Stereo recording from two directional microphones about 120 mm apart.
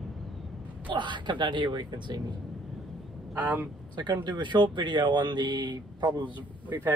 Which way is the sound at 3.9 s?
40° right (ahead or behind).